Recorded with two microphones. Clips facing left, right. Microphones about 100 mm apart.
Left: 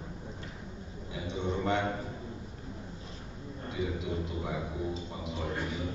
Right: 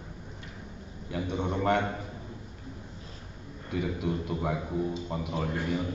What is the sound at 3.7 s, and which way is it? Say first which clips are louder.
A man's voice: right 4 dB; 55° right (ahead or behind).